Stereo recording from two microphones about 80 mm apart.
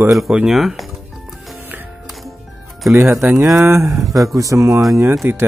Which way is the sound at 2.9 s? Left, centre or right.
Right.